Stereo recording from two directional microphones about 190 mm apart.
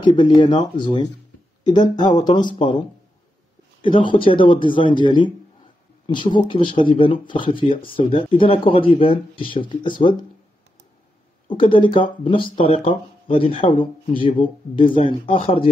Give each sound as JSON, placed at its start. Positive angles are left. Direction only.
{"t": 0.0, "sound": "speech", "side_deg": 25}
{"t": 3.8, "sound": "speech", "side_deg": 25}
{"t": 6.3, "sound": "speech", "side_deg": 25}
{"t": 11.4, "sound": "speech", "side_deg": 25}